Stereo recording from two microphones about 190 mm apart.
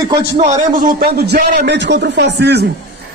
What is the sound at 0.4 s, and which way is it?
A man's voice, 45° right (ahead or behind).